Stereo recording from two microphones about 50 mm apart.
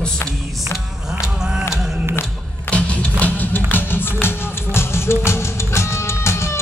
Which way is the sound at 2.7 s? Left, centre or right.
Left.